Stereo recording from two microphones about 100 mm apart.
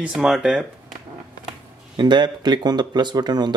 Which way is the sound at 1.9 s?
50° right (ahead or behind).